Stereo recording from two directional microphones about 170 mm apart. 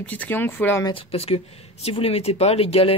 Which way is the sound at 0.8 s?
30° left (ahead or behind).